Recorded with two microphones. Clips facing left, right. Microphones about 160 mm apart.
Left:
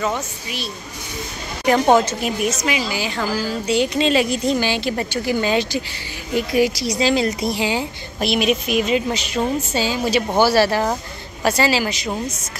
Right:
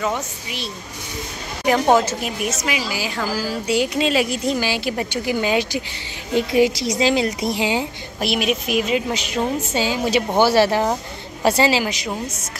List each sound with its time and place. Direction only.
0.1 s a woman's voice: 20° right (ahead or behind)
1.7 s a woman's voice: 5° right (ahead or behind)
6.3 s a woman's voice: 25° right (ahead or behind)
8.2 s a woman's voice: 5° right (ahead or behind)